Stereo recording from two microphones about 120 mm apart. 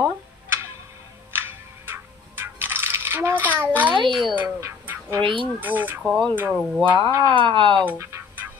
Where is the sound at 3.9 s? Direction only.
40° right (ahead or behind).